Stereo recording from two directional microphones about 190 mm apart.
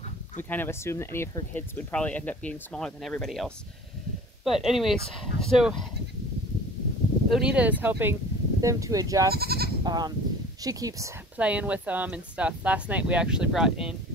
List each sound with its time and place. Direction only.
0.4 s speech: 10° left (ahead or behind)
7.2 s speech: 5° right (ahead or behind)
9.3 s speech: 55° right (ahead or behind)
9.8 s speech: 20° right (ahead or behind); by 13.9 s centre (ahead or behind)